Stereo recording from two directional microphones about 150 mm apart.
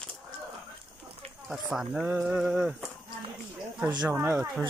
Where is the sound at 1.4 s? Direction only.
5° right (ahead or behind).